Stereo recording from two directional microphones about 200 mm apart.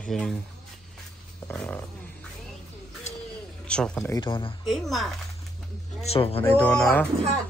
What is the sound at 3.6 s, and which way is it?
Speech, 5° left (ahead or behind).